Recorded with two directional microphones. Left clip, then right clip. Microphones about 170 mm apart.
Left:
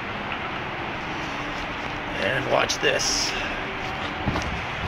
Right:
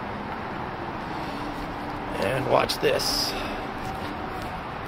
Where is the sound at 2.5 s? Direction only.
25° right (ahead or behind).